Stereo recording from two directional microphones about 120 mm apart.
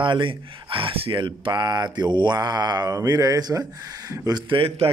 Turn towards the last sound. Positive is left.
turn(degrees=-50)  # may be behind; listen again after turning